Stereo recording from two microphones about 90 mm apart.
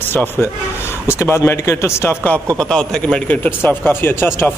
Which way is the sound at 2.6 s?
5° left (ahead or behind).